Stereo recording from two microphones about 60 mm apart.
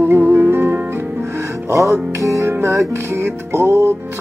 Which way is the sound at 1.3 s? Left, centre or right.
Right.